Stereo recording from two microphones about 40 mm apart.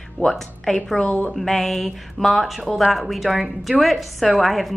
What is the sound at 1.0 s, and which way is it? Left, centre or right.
Speech, left.